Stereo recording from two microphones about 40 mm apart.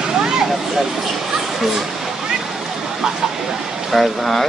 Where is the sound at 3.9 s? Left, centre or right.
Centre.